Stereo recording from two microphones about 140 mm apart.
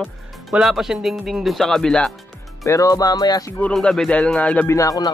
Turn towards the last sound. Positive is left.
turn(degrees=25)  # may be behind; listen again after turning